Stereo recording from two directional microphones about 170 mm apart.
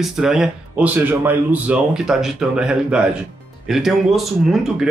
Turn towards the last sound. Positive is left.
turn(degrees=0)  # may be behind; listen again after turning